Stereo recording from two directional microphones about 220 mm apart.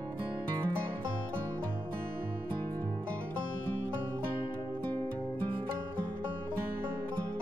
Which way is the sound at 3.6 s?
60° left (ahead or behind).